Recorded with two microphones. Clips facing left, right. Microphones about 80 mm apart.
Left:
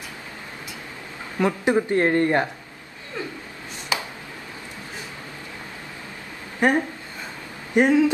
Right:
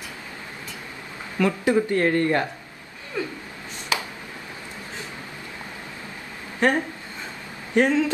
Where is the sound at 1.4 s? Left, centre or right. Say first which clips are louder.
Even; left.